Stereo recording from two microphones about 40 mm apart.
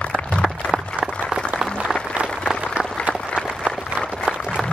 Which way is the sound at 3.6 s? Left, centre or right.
Centre.